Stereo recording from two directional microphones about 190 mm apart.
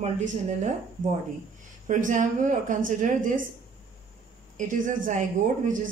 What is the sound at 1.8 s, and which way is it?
Speech, 40° right (ahead or behind).